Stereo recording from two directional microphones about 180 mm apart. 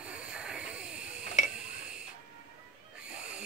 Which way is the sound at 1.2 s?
40° left (ahead or behind).